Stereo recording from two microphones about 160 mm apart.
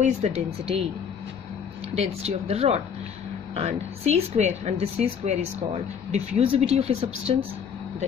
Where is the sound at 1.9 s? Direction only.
40° right (ahead or behind).